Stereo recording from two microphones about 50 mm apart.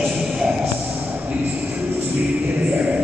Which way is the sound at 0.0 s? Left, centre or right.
Centre.